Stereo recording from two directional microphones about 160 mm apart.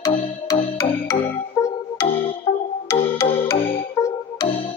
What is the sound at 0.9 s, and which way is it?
Music, 10° left (ahead or behind).